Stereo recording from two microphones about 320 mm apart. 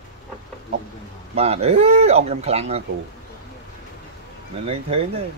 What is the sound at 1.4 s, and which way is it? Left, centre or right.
Speech, centre.